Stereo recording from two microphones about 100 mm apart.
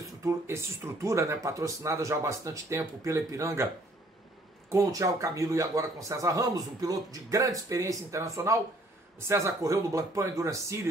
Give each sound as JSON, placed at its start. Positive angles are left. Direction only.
{"t": 0.2, "sound": "speech", "side_deg": -30}
{"t": 4.6, "sound": "speech", "side_deg": -35}